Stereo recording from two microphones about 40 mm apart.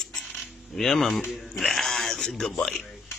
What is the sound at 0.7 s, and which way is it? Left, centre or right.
Speech, centre.